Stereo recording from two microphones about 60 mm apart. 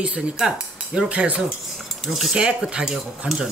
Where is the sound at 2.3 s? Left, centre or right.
Centre.